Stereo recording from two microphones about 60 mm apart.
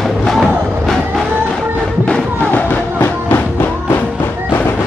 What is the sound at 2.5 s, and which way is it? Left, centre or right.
Music, left.